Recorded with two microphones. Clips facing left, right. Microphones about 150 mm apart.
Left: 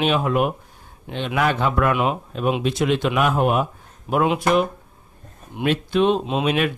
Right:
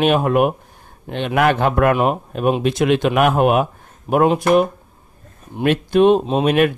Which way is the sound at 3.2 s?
65° right (ahead or behind).